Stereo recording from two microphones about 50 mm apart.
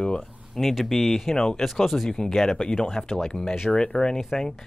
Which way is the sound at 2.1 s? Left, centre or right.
Centre.